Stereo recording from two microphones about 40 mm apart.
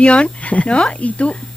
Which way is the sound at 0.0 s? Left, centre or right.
Left.